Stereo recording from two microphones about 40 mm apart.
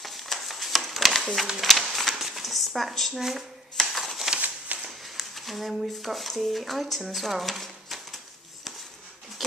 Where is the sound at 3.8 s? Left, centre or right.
Centre.